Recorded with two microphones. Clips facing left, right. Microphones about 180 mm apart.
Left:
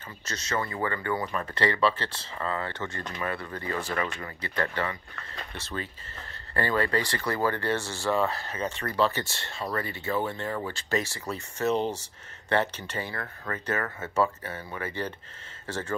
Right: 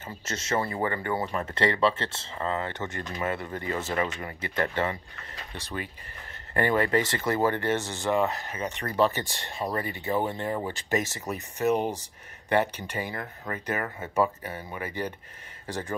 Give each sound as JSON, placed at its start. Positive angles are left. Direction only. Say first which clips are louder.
{"t": 0.2, "sound": "speech", "louder": "right 3 dB", "side_deg": -25}